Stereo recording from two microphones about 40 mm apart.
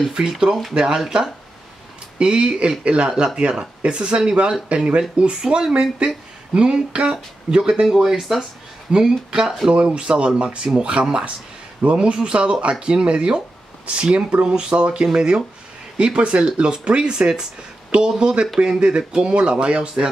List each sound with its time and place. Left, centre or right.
0.1 s speech: centre
2.1 s speech: right
7.8 s speech: centre
8.9 s a man's voice: right
12.1 s speech: right